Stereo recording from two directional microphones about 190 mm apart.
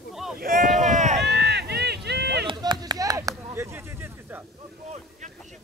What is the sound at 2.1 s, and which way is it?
Chop, 60° right (ahead or behind).